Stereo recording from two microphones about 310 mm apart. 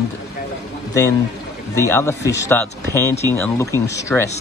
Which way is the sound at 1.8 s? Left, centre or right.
Centre.